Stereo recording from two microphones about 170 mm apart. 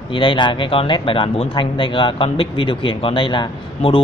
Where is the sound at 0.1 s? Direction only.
30° left (ahead or behind).